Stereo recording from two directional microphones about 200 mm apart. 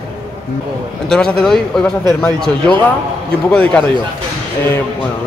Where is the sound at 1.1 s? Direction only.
5° left (ahead or behind).